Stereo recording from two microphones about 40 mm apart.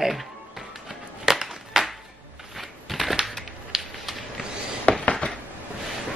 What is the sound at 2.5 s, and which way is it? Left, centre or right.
Typing, centre.